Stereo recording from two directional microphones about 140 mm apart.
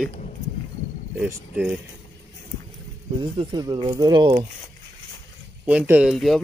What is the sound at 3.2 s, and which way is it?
Speech, 35° right (ahead or behind).